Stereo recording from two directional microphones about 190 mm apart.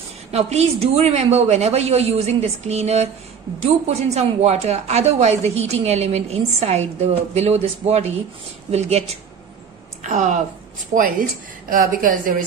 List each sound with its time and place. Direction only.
0.3 s a woman's voice: 35° right (ahead or behind)
10.0 s a woman's voice: 40° right (ahead or behind)